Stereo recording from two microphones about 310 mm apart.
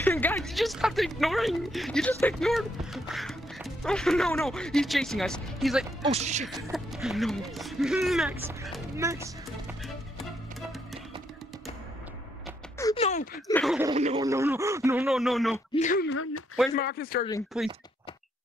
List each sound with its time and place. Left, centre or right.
0.0 s speech: centre
6.0 s speech: right
6.4 s speech: centre
12.7 s speech: centre
13.5 s speech: centre
13.9 s speech: centre
15.7 s speech: left
17.5 s speech: centre